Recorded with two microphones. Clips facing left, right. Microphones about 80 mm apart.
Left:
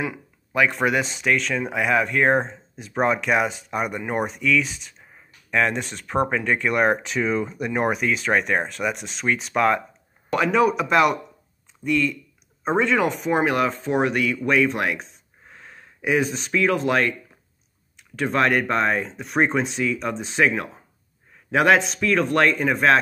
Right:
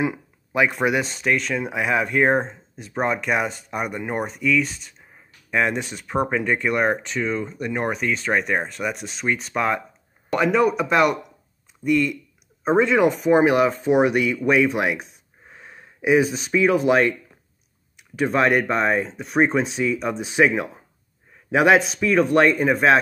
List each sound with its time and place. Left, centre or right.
0.5 s speech: centre
18.1 s speech: centre